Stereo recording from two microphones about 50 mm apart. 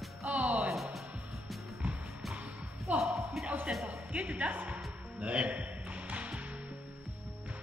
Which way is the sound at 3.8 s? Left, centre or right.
Right.